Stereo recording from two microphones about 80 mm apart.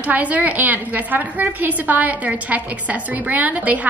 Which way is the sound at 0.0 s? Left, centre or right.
Centre.